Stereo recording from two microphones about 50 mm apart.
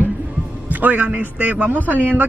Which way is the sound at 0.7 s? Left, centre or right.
Right.